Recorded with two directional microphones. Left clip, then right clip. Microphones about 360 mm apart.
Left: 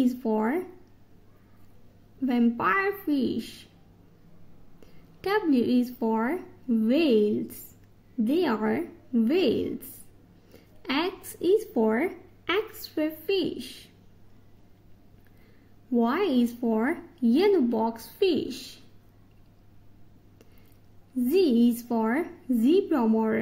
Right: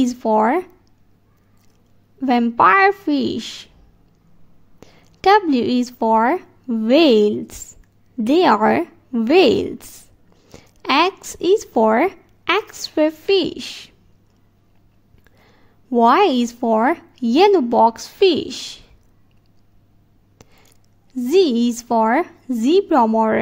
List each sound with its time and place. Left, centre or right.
0.0 s a woman's voice: centre
2.1 s a woman's voice: centre
4.7 s a woman's voice: right
15.4 s a woman's voice: right
21.3 s a woman's voice: centre